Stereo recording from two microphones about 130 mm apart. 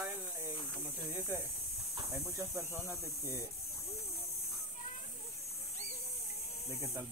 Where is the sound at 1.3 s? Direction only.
15° right (ahead or behind).